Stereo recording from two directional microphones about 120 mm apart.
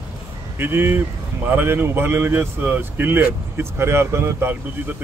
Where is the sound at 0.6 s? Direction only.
20° right (ahead or behind).